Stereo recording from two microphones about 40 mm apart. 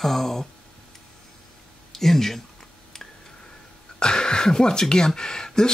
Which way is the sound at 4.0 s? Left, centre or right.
Left.